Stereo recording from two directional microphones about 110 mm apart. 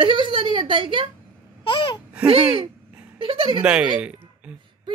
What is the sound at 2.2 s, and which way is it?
A woman's voice, 55° right (ahead or behind).